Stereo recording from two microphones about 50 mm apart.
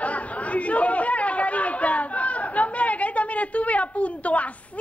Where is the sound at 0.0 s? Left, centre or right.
Left.